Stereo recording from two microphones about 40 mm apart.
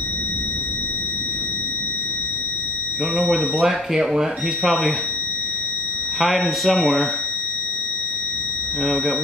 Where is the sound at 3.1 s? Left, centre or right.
Centre.